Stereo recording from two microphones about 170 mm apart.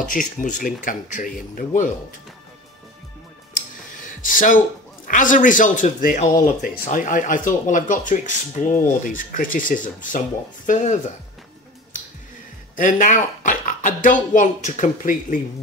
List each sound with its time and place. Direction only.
0.1 s speech: 50° left (ahead or behind)
4.0 s music: 50° left (ahead or behind)
5.0 s speech: 50° left (ahead or behind)
12.7 s speech: 50° left (ahead or behind)